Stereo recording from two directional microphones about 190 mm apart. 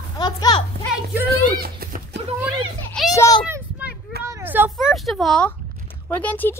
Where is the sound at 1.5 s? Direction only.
50° right (ahead or behind).